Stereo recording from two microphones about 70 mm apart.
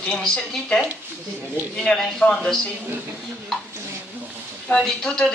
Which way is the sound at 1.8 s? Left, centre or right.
Centre.